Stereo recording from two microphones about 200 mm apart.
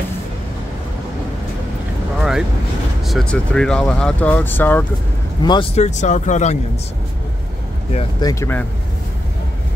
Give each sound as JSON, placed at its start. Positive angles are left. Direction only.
{"t": 3.1, "sound": "speech", "side_deg": 0}
{"t": 5.4, "sound": "speech", "side_deg": 20}
{"t": 5.8, "sound": "speech", "side_deg": 35}
{"t": 7.9, "sound": "speech", "side_deg": 25}